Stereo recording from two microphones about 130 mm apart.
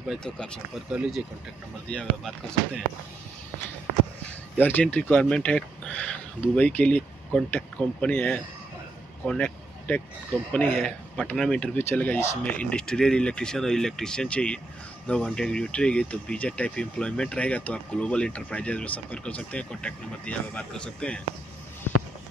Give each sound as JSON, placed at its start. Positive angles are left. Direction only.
{"t": 0.0, "sound": "speech", "side_deg": 0}
{"t": 0.8, "sound": "speech", "side_deg": -5}
{"t": 1.9, "sound": "speech", "side_deg": 5}
{"t": 4.6, "sound": "speech", "side_deg": 15}